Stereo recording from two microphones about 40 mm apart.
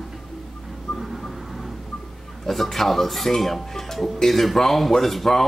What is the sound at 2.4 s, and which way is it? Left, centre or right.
Speech, centre.